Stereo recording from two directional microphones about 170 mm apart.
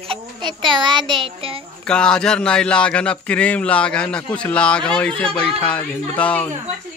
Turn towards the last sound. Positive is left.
turn(degrees=10)  # may be behind; listen again after turning